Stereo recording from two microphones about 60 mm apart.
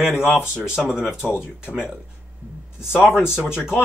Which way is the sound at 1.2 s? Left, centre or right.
Left.